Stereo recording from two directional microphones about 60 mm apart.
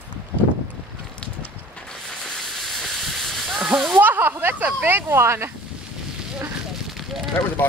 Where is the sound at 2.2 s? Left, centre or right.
Centre.